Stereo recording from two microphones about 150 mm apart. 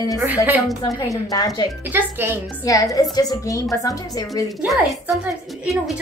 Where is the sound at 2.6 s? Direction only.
25° left (ahead or behind).